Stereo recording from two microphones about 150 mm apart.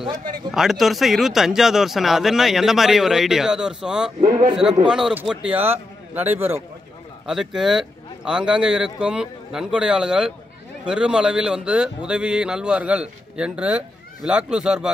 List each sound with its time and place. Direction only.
0.5 s a man's voice: centre (ahead or behind)
7.2 s a man's voice: 5° right (ahead or behind)